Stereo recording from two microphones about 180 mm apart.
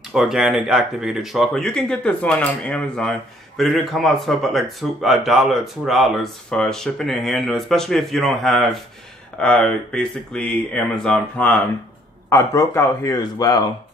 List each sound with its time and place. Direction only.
0.1 s speech: centre (ahead or behind)
12.3 s speech: 15° left (ahead or behind)